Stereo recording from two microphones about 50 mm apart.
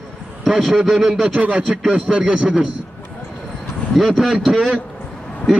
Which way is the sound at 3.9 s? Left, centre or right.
Centre.